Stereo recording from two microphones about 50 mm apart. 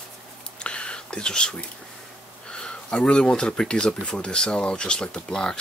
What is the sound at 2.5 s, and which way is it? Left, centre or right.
Speech, left.